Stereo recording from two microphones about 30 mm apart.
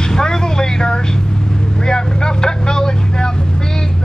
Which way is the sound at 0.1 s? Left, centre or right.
Left.